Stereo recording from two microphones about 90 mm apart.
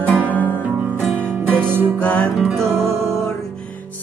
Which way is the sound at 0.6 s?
20° right (ahead or behind).